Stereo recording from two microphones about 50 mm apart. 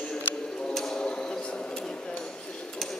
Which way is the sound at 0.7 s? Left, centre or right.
Centre.